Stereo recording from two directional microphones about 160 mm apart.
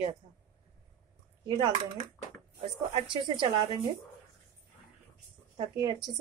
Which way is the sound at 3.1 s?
30° right (ahead or behind).